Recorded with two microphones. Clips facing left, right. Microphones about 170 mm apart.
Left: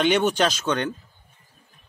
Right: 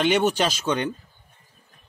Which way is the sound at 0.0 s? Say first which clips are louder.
Left 1 dB; 5° right (ahead or behind).